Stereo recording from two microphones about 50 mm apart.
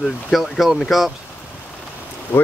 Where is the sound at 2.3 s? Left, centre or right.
Left.